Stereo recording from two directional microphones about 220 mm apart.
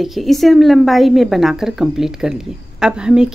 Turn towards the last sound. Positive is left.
turn(degrees=-5)  # may be behind; listen again after turning